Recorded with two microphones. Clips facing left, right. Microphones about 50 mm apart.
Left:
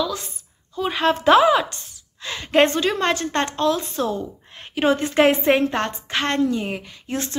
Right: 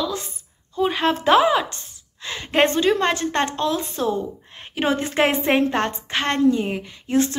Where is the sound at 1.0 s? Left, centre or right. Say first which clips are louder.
Left 3 dB; centre.